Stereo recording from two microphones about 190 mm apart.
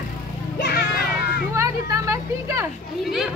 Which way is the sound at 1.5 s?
15° right (ahead or behind).